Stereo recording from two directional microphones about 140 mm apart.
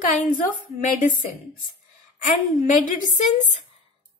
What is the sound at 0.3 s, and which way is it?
Speech, 70° left (ahead or behind).